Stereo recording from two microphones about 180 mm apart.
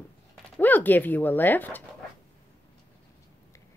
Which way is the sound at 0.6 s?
10° left (ahead or behind).